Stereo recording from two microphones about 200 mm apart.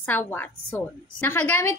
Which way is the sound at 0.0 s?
10° left (ahead or behind).